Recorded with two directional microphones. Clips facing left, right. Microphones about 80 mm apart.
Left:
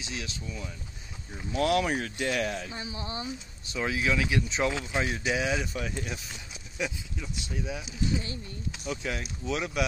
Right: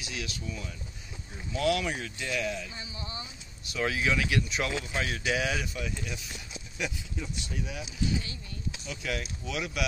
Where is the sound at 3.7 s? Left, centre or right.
Centre.